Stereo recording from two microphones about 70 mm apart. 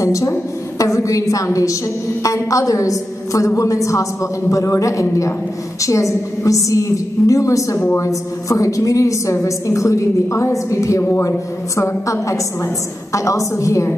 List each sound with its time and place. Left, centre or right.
0.0 s a woman's voice: left
12.1 s a woman's voice: left